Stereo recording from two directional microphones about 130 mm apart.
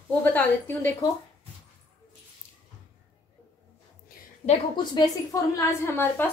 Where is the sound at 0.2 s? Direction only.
15° left (ahead or behind).